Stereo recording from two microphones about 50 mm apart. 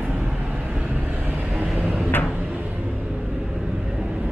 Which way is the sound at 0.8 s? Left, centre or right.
Right.